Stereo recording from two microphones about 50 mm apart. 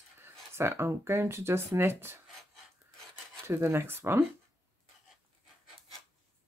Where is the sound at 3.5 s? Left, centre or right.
Right.